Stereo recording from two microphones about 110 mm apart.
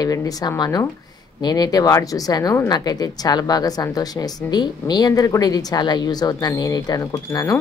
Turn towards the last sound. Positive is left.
turn(degrees=30)  # may be behind; listen again after turning